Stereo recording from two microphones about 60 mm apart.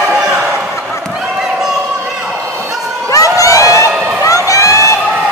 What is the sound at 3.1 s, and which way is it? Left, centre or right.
Crowd, left.